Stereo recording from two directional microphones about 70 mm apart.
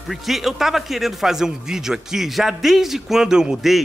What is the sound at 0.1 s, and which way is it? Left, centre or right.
Speech, centre.